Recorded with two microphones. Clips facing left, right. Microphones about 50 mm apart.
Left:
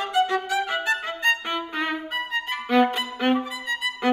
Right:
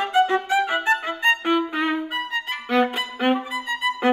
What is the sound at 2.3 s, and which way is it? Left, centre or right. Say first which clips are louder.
Violin: left 2 dB; centre.